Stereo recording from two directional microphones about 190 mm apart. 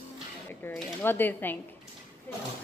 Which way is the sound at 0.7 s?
10° left (ahead or behind).